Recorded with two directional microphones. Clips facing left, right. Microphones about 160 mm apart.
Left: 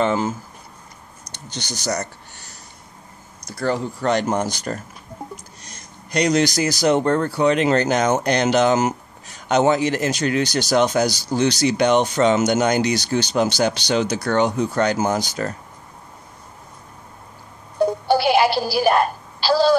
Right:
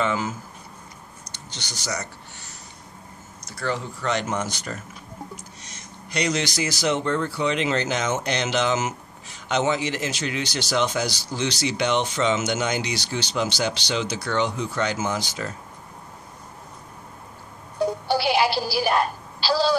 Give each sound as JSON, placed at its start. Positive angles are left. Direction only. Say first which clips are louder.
{"t": 0.0, "sound": "speech", "louder": "left 5 dB", "side_deg": 35}
{"t": 1.8, "sound": "speech", "louder": "left 6 dB", "side_deg": 40}
{"t": 3.4, "sound": "speech", "louder": "left 6 dB", "side_deg": 40}
{"t": 6.1, "sound": "speech", "louder": "left 7 dB", "side_deg": 45}
{"t": 18.0, "sound": "a sound", "louder": "left 5 dB", "side_deg": 50}